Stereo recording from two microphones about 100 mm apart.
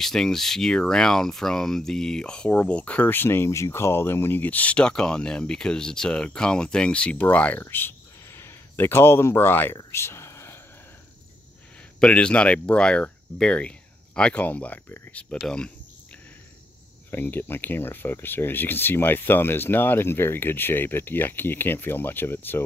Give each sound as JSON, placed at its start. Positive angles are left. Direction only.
{"t": 0.0, "sound": "speech", "side_deg": 5}
{"t": 9.8, "sound": "a sound", "side_deg": 25}
{"t": 12.0, "sound": "speech", "side_deg": 10}
{"t": 15.3, "sound": "speech", "side_deg": 5}
{"t": 17.1, "sound": "speech", "side_deg": 20}